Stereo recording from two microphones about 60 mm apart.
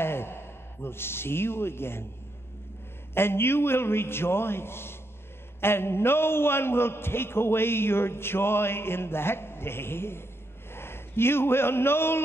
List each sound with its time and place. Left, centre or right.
0.0 s a sound: left
0.8 s a man's voice: left
3.2 s a man's voice: left